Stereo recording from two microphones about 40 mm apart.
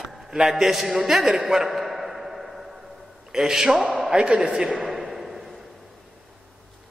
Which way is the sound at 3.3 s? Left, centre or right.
Centre.